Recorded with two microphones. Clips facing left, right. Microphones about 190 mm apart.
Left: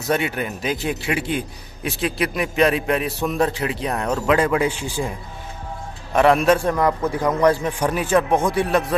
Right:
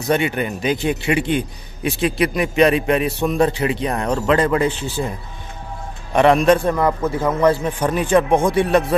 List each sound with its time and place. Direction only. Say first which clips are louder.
0.0 s a man's voice: right 3 dB; centre (ahead or behind)
6.1 s a man's voice: right 2 dB; 5° left (ahead or behind)
6.7 s a man's voice: right 1 dB; 5° right (ahead or behind)
7.8 s a man's voice: right 3 dB; 5° left (ahead or behind)